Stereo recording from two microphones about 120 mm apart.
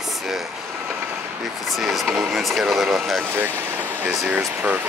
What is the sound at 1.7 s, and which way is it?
Speech, centre (ahead or behind).